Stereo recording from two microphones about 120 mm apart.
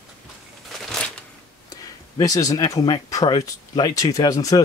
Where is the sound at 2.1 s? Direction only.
30° left (ahead or behind).